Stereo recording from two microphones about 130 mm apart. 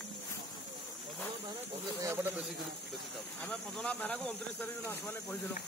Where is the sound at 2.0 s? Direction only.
20° right (ahead or behind).